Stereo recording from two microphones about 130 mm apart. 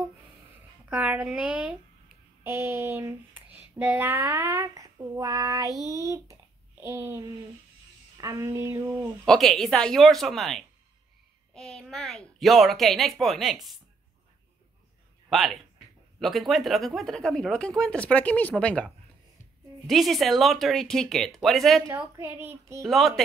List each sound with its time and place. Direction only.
0.8 s a woman's voice: 10° right (ahead or behind)
2.4 s a sound: 20° right (ahead or behind)
9.2 s speech: 5° left (ahead or behind)
11.7 s speech: centre (ahead or behind)
15.2 s speech: centre (ahead or behind)
19.9 s speech: centre (ahead or behind)
21.8 s a sound: 20° right (ahead or behind)
22.8 s speech: centre (ahead or behind)